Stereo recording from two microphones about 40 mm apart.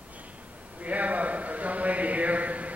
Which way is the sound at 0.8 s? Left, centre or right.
Right.